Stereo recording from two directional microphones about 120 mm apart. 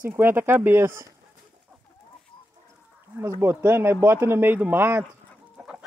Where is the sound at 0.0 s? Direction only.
20° right (ahead or behind).